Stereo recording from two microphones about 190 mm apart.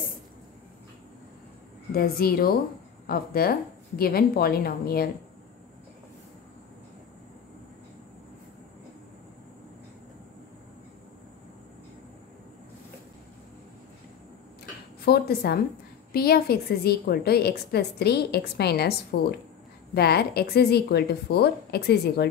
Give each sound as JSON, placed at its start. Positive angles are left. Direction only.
{"t": 2.0, "sound": "a woman's voice", "side_deg": 55}
{"t": 15.0, "sound": "a woman's voice", "side_deg": 55}